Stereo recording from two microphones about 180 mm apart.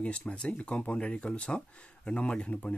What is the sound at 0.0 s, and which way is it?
Speech, 5° left (ahead or behind).